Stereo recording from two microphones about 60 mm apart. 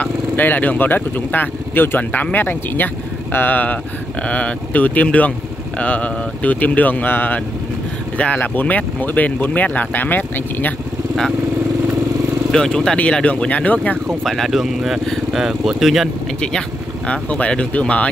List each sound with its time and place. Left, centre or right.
0.0 s speech: left
12.4 s speech: centre
12.9 s speech: left
14.0 s speech: centre
16.3 s speech: centre